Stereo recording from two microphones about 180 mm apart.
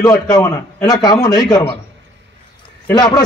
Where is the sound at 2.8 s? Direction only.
20° left (ahead or behind).